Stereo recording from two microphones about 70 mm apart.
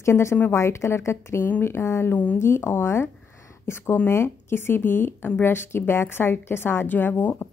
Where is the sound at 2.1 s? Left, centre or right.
Left.